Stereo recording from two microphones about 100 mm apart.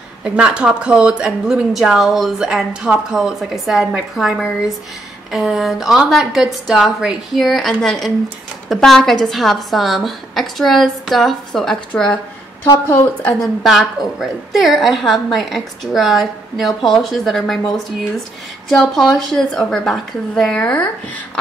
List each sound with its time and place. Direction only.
0.2 s a woman's voice: 10° right (ahead or behind); by 12.2 s 10° left (ahead or behind)
13.4 s a woman's voice: centre (ahead or behind)
18.9 s a woman's voice: 5° left (ahead or behind)